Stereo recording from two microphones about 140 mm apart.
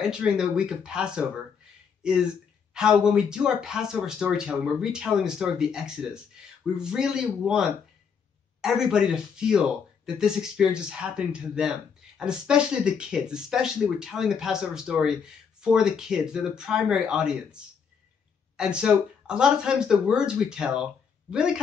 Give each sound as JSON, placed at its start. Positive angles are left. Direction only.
{"t": 0.0, "sound": "speech", "side_deg": -5}
{"t": 18.6, "sound": "speech", "side_deg": -5}